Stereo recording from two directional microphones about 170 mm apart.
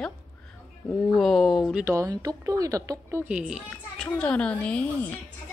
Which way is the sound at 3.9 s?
5° left (ahead or behind).